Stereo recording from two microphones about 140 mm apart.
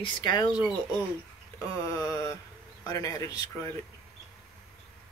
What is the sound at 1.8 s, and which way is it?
Mantra, 25° left (ahead or behind).